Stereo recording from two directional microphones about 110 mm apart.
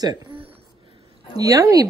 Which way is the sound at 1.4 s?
35° right (ahead or behind).